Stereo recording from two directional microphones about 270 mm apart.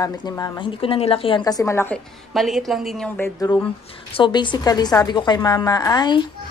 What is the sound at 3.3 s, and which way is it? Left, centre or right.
A woman's voice, centre.